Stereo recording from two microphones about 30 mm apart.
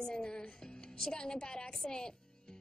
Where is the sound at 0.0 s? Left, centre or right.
Left.